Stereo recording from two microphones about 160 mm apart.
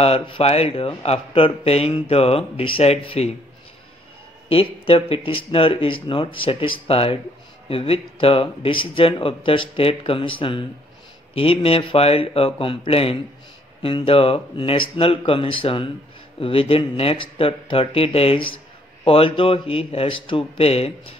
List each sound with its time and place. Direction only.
0.0 s speech: 40° left (ahead or behind)
4.5 s speech: 35° left (ahead or behind)